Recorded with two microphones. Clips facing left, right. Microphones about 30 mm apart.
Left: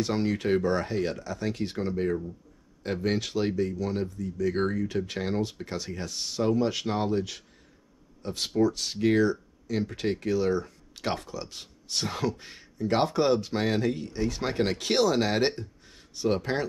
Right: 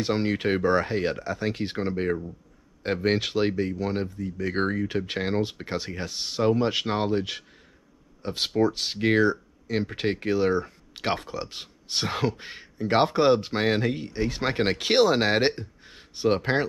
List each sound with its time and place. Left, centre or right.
0.0 s speech: right